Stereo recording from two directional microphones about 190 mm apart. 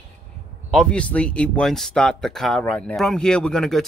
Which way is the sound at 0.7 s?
5° left (ahead or behind).